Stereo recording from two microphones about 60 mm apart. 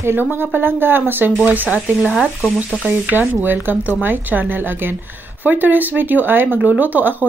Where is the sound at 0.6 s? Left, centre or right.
Right.